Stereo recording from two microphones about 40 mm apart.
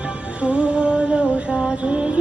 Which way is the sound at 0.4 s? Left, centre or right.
Right.